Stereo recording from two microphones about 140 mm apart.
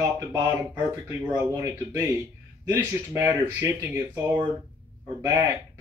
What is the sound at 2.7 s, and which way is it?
Speech, 20° right (ahead or behind).